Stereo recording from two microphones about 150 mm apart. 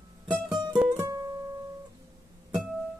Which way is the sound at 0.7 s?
10° right (ahead or behind).